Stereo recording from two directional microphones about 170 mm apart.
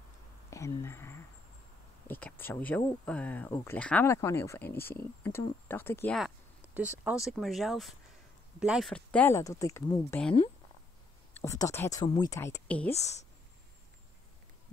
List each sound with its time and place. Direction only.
0.5 s a sound: 15° left (ahead or behind)
2.0 s speech: 10° left (ahead or behind)
6.1 s a sound: 5° right (ahead or behind)
7.1 s speech: centre (ahead or behind); by 10.2 s 15° left (ahead or behind)
11.3 s speech: 20° left (ahead or behind)
12.9 s speech: 40° left (ahead or behind)